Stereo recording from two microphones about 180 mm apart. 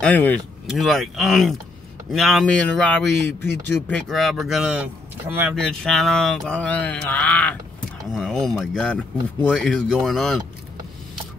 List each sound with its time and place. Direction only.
0.0 s mantra: 10° left (ahead or behind)
2.0 s speech: centre (ahead or behind)
3.8 s mantra: 5° left (ahead or behind)
5.6 s mantra: centre (ahead or behind)